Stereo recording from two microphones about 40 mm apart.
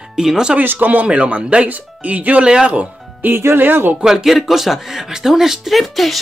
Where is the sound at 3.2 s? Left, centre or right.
Right.